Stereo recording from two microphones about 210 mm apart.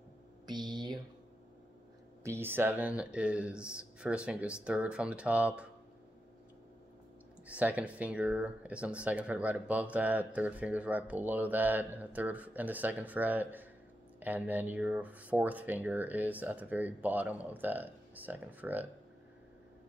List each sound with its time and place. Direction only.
0.5 s speech: 20° right (ahead or behind)
2.2 s speech: 10° right (ahead or behind)
7.4 s speech: 5° right (ahead or behind)